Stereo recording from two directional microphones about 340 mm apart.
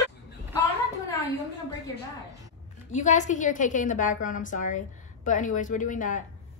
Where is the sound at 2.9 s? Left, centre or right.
Left.